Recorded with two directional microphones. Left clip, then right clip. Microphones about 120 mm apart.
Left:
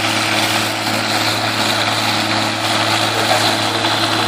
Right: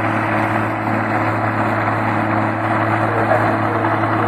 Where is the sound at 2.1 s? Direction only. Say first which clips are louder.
Left 1 dB; 25° left (ahead or behind).